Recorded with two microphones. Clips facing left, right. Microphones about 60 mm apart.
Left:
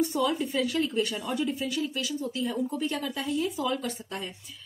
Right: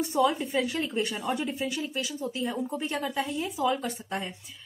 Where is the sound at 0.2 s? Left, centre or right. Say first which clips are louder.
Right 2 dB; right.